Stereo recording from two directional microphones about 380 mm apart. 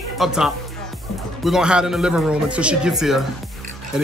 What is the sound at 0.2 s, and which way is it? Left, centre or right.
A man's voice, centre.